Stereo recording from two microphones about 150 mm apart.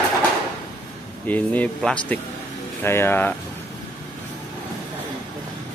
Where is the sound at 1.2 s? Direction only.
10° left (ahead or behind).